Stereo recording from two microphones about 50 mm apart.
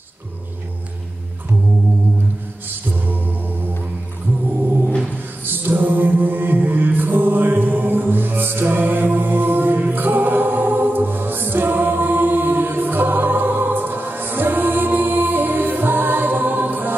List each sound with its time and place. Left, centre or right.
2.7 s music: right
5.4 s music: right